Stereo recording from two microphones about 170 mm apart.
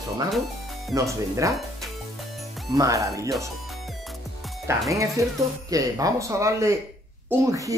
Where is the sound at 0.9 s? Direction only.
20° right (ahead or behind).